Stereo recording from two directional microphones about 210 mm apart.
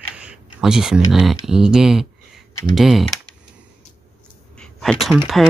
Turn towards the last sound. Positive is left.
turn(degrees=0)  # may be behind; listen again after turning